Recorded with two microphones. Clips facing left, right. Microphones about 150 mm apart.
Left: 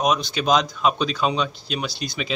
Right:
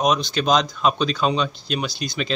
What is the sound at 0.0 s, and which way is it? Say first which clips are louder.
Speech: right 1 dB; 5° left (ahead or behind).